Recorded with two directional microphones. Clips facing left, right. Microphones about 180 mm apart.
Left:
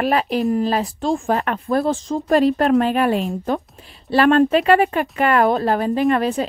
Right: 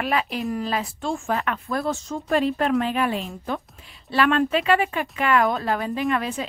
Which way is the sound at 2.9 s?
60° left (ahead or behind).